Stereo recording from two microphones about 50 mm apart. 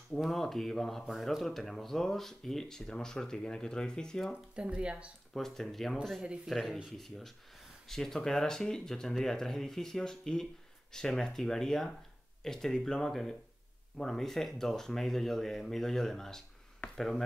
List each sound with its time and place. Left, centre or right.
0.1 s speech: centre
4.6 s speech: right
5.3 s speech: centre